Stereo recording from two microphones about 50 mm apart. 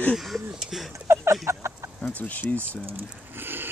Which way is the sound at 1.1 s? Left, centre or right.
Right.